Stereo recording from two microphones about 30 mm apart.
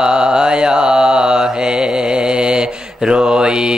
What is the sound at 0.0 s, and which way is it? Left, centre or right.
Mantra, right.